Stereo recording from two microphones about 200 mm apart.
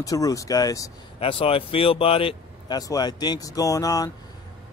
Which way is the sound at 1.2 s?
30° left (ahead or behind).